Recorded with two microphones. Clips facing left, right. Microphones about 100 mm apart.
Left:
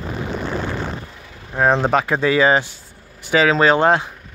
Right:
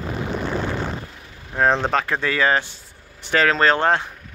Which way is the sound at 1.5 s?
5° left (ahead or behind).